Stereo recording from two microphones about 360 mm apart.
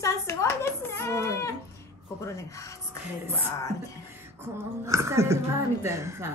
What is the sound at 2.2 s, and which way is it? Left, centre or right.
Speech, centre.